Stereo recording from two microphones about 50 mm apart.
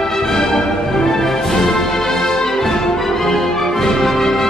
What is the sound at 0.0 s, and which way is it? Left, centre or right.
Music, centre.